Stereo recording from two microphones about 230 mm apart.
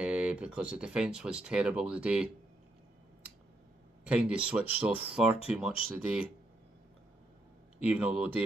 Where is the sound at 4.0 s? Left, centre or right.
Centre.